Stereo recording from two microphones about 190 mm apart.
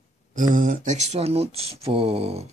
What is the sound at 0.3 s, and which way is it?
Speech, 45° right (ahead or behind).